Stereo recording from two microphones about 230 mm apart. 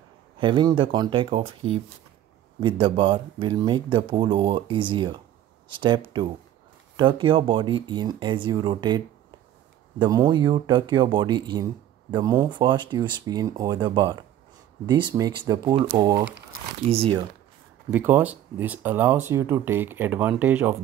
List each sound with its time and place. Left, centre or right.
0.4 s speech: right
17.9 s speech: centre